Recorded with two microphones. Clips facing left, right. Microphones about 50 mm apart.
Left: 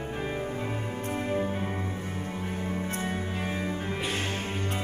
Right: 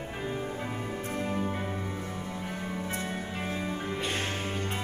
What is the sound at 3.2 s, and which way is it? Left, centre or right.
Music, centre.